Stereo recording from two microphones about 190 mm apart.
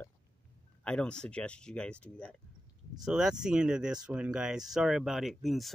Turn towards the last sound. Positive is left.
turn(degrees=0)  # may be behind; listen again after turning